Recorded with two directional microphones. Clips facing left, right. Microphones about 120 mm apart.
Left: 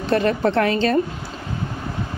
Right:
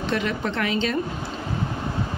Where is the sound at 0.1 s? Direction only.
40° left (ahead or behind).